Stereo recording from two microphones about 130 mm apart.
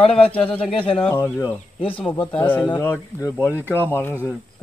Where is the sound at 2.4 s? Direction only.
15° left (ahead or behind).